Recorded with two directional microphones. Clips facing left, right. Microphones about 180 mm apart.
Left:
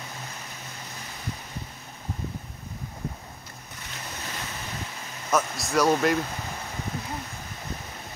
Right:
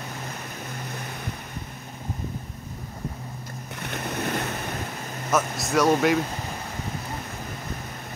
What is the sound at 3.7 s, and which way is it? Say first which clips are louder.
Waves: right 10 dB; 60° right (ahead or behind).